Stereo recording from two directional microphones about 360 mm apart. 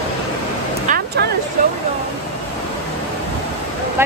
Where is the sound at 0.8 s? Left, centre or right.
Right.